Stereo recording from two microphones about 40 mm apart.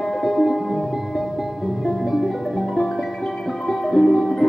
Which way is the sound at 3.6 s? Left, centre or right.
Centre.